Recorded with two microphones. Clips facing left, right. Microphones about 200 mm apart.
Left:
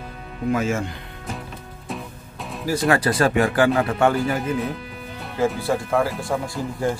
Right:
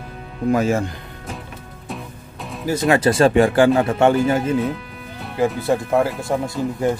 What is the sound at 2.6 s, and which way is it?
Speech, 20° right (ahead or behind).